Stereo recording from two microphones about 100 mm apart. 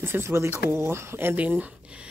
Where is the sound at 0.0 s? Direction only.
25° right (ahead or behind).